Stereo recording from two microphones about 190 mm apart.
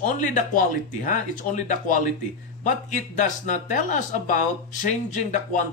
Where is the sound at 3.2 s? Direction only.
40° left (ahead or behind).